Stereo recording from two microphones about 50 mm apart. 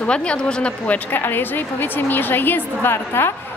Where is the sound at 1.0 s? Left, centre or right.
Left.